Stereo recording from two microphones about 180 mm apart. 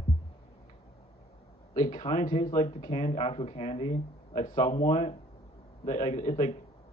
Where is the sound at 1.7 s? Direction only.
40° left (ahead or behind).